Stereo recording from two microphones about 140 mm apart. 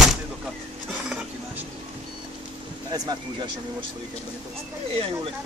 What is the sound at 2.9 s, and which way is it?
Speech, 25° right (ahead or behind).